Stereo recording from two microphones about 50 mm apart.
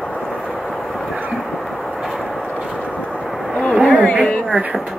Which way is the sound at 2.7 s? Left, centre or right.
Left.